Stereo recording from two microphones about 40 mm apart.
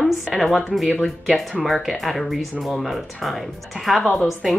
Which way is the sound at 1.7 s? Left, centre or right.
Centre.